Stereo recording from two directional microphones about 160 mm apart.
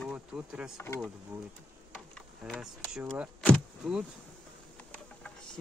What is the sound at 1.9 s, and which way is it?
Speech, centre (ahead or behind).